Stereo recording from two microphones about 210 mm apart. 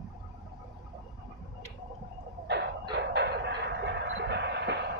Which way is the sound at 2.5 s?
55° right (ahead or behind).